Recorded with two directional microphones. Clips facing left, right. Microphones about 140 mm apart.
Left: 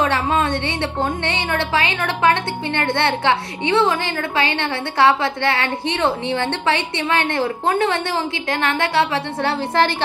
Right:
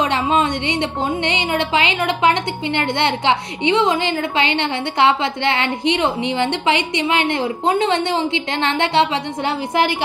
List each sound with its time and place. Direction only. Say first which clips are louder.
0.0 s a woman's voice: right 1 dB; 20° right (ahead or behind)